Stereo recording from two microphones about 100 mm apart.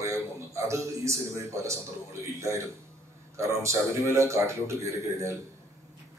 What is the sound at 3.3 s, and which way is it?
A man's voice, 30° right (ahead or behind).